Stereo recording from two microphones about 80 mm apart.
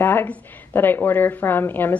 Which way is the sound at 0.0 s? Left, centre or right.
Left.